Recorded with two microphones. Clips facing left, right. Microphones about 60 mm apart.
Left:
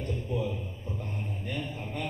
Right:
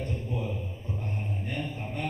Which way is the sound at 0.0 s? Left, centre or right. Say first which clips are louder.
Left 1 dB; right.